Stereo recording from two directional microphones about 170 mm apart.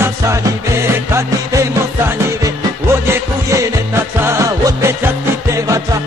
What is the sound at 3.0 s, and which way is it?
Music, 15° right (ahead or behind).